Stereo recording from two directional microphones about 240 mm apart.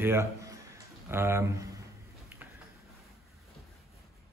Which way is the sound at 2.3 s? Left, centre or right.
Centre.